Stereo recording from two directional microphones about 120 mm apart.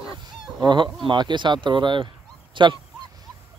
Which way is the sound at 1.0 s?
40° right (ahead or behind).